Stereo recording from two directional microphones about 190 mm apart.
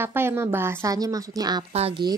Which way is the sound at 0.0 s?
10° right (ahead or behind).